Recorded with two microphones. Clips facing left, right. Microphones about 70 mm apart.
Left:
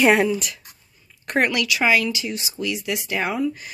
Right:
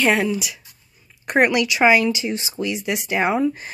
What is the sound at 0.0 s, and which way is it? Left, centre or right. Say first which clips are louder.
Speech: left 2 dB; centre.